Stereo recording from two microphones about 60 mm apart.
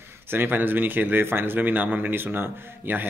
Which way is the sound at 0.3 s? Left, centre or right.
Right.